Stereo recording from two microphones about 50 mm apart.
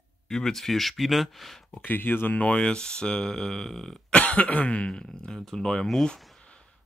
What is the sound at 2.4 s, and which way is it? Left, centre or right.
Speech, left.